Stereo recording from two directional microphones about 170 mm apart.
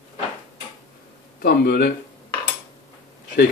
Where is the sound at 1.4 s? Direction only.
70° left (ahead or behind).